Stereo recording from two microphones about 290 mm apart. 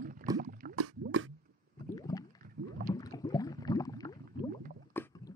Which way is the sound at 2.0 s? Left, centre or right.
Centre.